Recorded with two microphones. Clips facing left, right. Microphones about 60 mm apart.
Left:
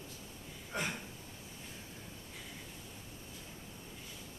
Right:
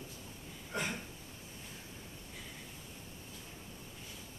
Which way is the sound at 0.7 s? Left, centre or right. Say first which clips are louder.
Even; centre.